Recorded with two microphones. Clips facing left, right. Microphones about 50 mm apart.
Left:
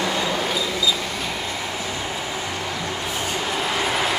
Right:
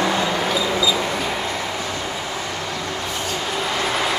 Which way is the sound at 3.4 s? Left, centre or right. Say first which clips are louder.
Right 1 dB; centre.